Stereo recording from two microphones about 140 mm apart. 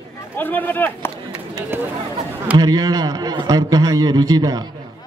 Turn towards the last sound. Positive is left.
turn(degrees=-25)  # may be behind; listen again after turning